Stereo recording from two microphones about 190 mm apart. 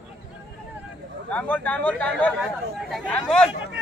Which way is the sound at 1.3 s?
10° left (ahead or behind).